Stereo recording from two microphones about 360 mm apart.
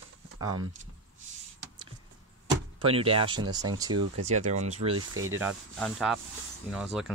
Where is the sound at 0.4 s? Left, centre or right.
Centre.